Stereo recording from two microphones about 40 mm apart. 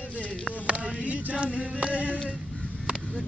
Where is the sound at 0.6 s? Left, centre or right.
Right.